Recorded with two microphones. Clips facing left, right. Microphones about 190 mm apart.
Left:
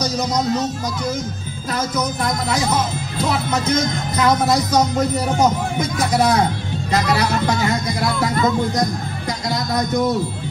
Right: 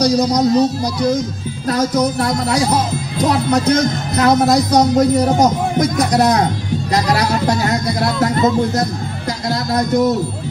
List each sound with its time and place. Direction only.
0.0 s speech: 35° right (ahead or behind)
5.2 s speech: 35° right (ahead or behind)